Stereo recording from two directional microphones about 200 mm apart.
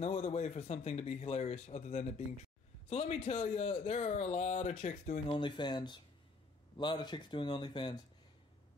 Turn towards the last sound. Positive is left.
turn(degrees=25)  # may be behind; listen again after turning